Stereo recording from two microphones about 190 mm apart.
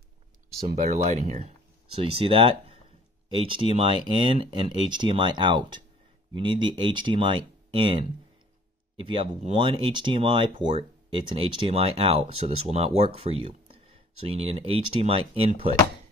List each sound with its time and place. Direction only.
0.7 s speech: 50° right (ahead or behind); by 15.4 s 30° right (ahead or behind)